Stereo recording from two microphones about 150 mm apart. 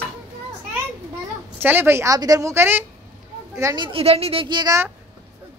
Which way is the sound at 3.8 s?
40° right (ahead or behind).